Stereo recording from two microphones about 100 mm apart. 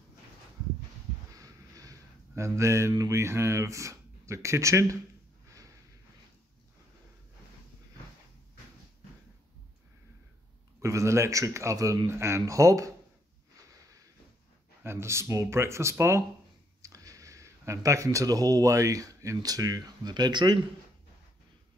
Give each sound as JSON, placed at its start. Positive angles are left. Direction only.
{"t": 1.3, "sound": "a sound", "side_deg": -35}
{"t": 2.9, "sound": "speech", "side_deg": -35}
{"t": 10.8, "sound": "a man's voice", "side_deg": -30}
{"t": 14.8, "sound": "speech", "side_deg": -25}